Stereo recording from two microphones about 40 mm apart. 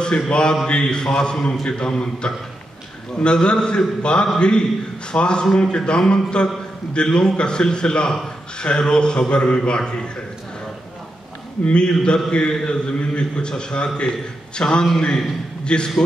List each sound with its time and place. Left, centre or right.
0.3 s a man's voice: left
11.6 s a man's voice: left